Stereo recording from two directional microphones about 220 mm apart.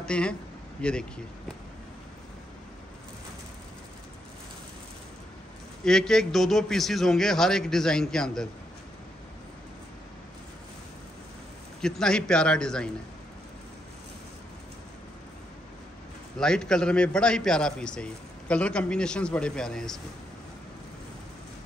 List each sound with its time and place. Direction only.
0.0 s speech: 5° left (ahead or behind)
5.9 s a man's voice: centre (ahead or behind)
11.8 s a man's voice: 5° left (ahead or behind)
16.3 s a man's voice: 5° left (ahead or behind)